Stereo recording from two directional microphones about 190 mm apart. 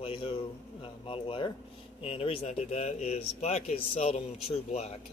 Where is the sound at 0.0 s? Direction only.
30° left (ahead or behind).